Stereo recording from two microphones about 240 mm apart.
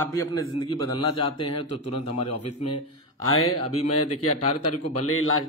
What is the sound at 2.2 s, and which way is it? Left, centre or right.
Speech, left.